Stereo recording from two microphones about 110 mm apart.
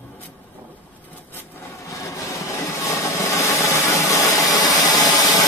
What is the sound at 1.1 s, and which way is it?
Vehicle, 20° left (ahead or behind).